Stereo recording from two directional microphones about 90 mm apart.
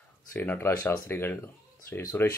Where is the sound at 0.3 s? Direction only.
25° left (ahead or behind).